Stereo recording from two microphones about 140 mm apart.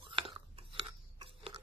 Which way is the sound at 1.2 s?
40° right (ahead or behind).